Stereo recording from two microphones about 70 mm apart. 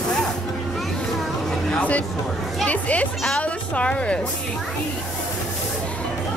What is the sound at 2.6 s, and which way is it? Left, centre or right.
Music, centre.